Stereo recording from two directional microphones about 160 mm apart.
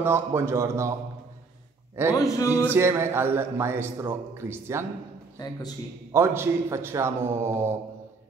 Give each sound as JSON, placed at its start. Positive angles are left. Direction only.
{"t": 0.0, "sound": "a man's voice", "side_deg": -15}
{"t": 2.1, "sound": "speech", "side_deg": 20}
{"t": 2.7, "sound": "a man's voice", "side_deg": -15}
{"t": 6.1, "sound": "a man's voice", "side_deg": -15}